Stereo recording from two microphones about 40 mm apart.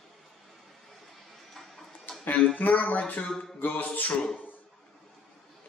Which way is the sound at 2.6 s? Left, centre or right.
Left.